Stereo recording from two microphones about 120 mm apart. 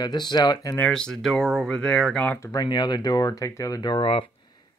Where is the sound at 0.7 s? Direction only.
10° left (ahead or behind).